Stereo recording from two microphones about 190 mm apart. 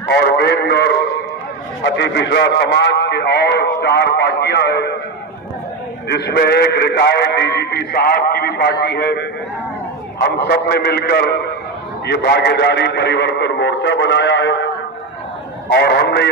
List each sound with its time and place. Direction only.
0.1 s speech: 55° left (ahead or behind)
6.0 s speech: 60° left (ahead or behind)
10.2 s speech: 60° left (ahead or behind)
15.7 s speech: 60° left (ahead or behind)